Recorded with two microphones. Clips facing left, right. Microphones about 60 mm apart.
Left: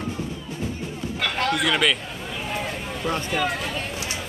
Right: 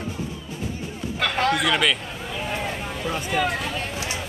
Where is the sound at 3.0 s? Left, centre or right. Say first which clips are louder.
Even; centre.